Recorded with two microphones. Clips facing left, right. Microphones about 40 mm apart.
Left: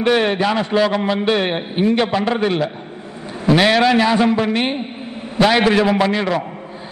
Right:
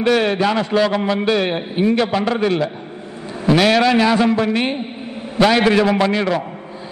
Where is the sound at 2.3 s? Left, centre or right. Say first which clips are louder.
Even; centre.